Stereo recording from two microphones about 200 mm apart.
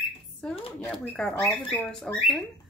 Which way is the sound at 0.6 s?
25° left (ahead or behind).